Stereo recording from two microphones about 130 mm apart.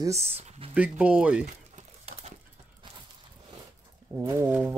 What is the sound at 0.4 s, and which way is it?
Speech, 50° right (ahead or behind).